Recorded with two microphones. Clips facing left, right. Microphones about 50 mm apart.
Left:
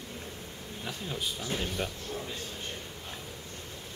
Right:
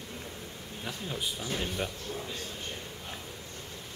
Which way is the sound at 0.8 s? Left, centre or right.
Centre.